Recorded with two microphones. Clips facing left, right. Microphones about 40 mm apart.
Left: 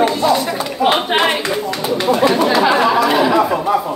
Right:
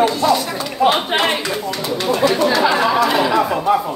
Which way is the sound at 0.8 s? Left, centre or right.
Centre.